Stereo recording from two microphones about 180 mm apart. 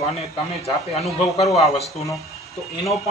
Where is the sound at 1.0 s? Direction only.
35° left (ahead or behind).